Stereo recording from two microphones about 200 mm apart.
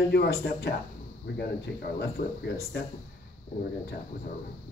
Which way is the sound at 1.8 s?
55° left (ahead or behind).